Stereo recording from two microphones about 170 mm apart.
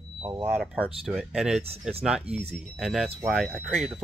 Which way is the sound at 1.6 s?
35° right (ahead or behind).